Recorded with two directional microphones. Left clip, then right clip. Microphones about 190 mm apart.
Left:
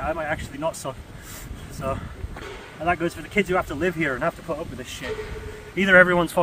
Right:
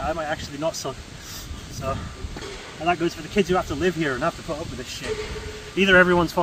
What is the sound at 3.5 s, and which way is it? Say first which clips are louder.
Speech: right 1 dB; 20° left (ahead or behind).